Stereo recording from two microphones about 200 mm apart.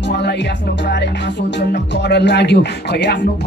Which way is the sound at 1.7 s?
60° left (ahead or behind).